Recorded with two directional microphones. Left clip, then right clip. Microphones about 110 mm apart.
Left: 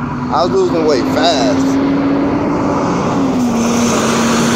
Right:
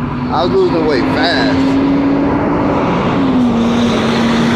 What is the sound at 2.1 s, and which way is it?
Vehicle, 40° left (ahead or behind).